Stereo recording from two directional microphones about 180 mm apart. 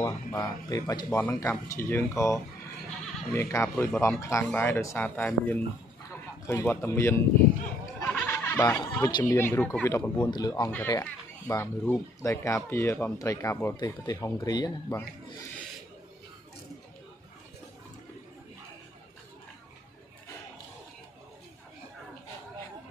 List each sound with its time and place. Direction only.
0.0 s speech: 20° left (ahead or behind)
8.0 s snicker: 10° left (ahead or behind)
8.6 s speech: 15° left (ahead or behind)